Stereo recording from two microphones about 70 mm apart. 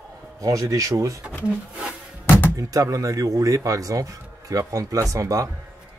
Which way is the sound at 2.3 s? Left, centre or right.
Left.